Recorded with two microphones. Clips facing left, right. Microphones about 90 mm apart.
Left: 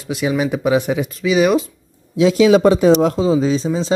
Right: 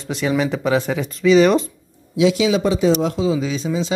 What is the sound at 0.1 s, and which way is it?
Speech, 5° left (ahead or behind).